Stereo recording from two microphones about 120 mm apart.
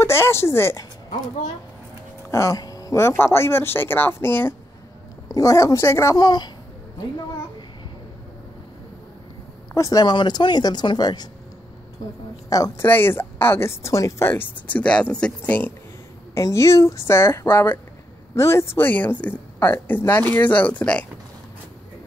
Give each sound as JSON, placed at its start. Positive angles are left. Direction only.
{"t": 0.0, "sound": "speech", "side_deg": 20}
{"t": 2.3, "sound": "speech", "side_deg": 25}
{"t": 9.8, "sound": "speech", "side_deg": 30}
{"t": 12.4, "sound": "speech", "side_deg": 30}
{"t": 12.8, "sound": "speech", "side_deg": 20}
{"t": 16.3, "sound": "speech", "side_deg": 25}